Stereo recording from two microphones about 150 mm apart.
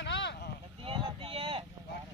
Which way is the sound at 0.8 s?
35° right (ahead or behind).